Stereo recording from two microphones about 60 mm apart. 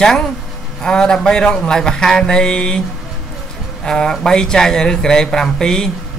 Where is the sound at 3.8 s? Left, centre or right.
Centre.